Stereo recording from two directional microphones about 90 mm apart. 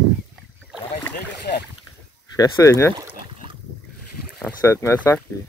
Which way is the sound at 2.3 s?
35° left (ahead or behind).